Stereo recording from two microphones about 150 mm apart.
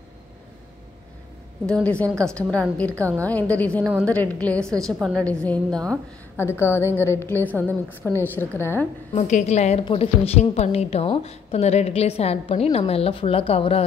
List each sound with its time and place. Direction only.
1.7 s a woman's voice: 5° left (ahead or behind)
3.0 s a woman's voice: 20° right (ahead or behind)
3.3 s a woman's voice: 10° left (ahead or behind)
9.1 s a woman's voice: 50° left (ahead or behind)